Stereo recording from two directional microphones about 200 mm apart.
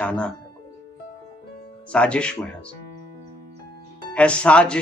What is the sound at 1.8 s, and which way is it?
Speech, 5° left (ahead or behind).